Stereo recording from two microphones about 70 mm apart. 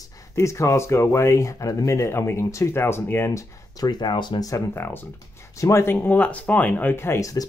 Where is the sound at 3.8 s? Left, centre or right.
Left.